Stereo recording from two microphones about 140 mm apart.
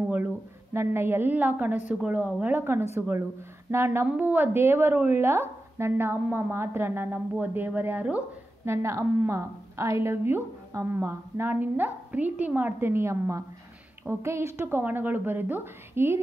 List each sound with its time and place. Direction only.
0.7 s a woman's voice: 15° right (ahead or behind)